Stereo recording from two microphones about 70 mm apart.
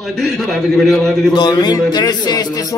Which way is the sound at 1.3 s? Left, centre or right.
Left.